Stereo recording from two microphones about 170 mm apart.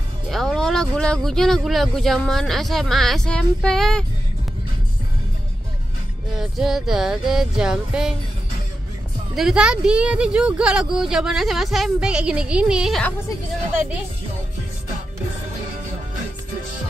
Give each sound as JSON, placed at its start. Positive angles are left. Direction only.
{"t": 0.3, "sound": "speech", "side_deg": 0}
{"t": 6.3, "sound": "speech", "side_deg": 0}
{"t": 9.3, "sound": "speech", "side_deg": -5}